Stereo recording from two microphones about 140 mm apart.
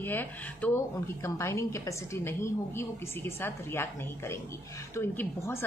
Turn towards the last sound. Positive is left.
turn(degrees=20)  # may be behind; listen again after turning